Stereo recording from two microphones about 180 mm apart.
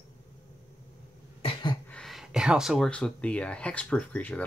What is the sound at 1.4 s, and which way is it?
Cough, 25° left (ahead or behind).